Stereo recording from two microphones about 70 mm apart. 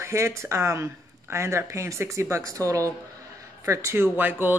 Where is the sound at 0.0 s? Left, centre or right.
Right.